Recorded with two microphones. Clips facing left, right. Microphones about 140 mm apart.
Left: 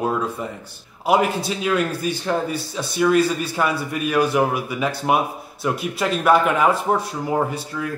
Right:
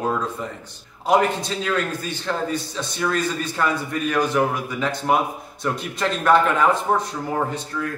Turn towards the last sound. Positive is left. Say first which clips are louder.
# left 1 dB
turn(degrees=10)  # may be behind; listen again after turning